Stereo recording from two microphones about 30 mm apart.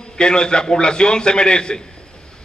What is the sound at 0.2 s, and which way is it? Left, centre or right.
A man's voice, left.